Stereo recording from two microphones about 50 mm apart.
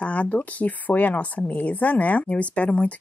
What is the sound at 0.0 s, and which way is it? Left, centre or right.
Speech, left.